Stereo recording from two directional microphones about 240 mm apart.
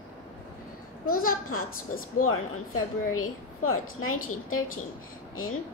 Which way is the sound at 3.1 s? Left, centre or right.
Left.